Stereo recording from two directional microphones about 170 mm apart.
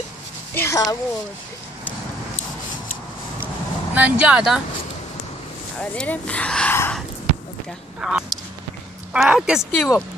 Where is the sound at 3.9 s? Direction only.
10° right (ahead or behind).